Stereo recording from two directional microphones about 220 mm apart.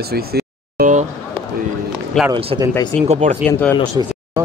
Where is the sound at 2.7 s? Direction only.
10° left (ahead or behind).